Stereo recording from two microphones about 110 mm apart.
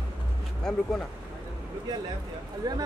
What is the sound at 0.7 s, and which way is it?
Speech, 5° left (ahead or behind).